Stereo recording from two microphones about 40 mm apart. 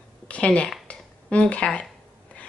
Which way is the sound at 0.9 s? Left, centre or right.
Left.